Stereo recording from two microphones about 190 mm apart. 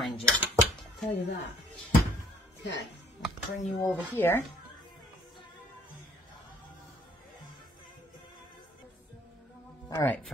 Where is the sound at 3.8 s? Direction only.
10° left (ahead or behind).